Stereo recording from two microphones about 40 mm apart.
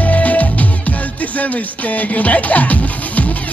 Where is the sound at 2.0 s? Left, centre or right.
Left.